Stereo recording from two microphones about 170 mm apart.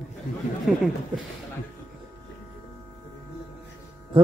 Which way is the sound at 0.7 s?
Centre (ahead or behind).